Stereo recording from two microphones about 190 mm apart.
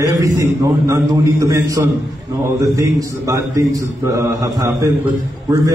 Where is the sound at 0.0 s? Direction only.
15° right (ahead or behind).